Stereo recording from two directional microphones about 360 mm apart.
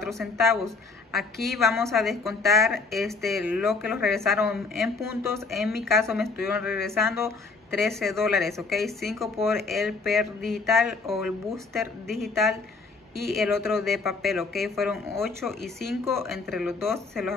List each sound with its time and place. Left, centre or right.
0.0 s a woman's voice: centre